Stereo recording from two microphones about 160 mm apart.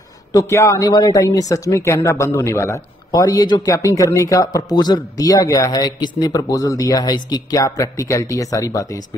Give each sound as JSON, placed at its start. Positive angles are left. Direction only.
{"t": 0.3, "sound": "speech", "side_deg": 20}